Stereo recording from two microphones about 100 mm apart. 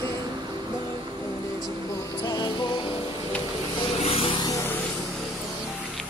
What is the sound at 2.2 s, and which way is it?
Music, 40° left (ahead or behind).